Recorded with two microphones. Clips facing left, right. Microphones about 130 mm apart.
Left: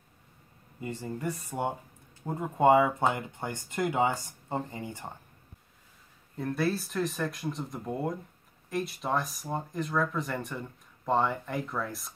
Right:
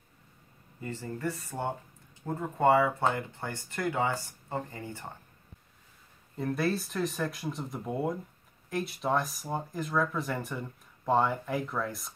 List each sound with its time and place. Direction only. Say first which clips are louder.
0.7 s speech: left 2 dB; 15° left (ahead or behind)
6.3 s speech: even; centre (ahead or behind)